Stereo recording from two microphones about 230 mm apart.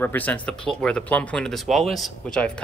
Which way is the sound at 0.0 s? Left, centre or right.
Centre.